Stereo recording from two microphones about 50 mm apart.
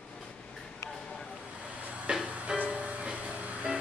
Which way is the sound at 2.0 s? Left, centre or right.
Centre.